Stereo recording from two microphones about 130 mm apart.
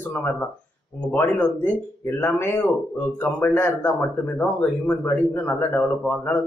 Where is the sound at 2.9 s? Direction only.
15° left (ahead or behind).